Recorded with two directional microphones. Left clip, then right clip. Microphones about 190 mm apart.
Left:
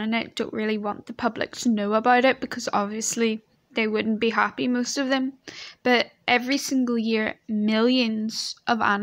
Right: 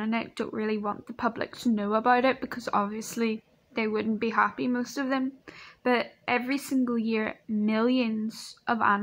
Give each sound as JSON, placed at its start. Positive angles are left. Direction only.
{"t": 0.0, "sound": "speech", "side_deg": 35}